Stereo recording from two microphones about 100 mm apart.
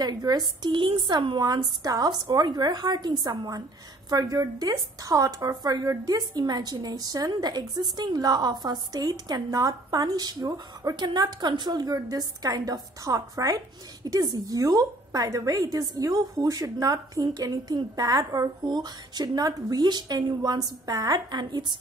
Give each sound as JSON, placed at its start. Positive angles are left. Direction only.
{"t": 0.0, "sound": "a woman's voice", "side_deg": -40}